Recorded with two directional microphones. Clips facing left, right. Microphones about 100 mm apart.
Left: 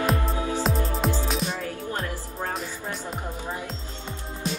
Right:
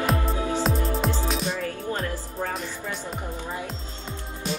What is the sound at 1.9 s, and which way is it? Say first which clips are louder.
Music: right 2 dB; 35° left (ahead or behind).